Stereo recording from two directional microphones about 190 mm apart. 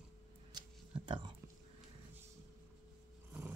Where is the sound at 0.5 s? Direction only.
25° right (ahead or behind).